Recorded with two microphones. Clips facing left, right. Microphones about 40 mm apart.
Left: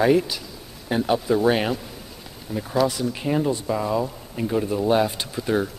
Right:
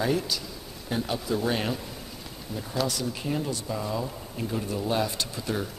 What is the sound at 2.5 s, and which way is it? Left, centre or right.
Speech, centre.